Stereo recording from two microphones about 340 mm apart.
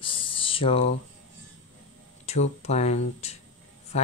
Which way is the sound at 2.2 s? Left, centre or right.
Centre.